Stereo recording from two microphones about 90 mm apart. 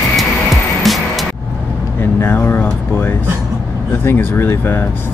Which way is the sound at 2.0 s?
25° left (ahead or behind).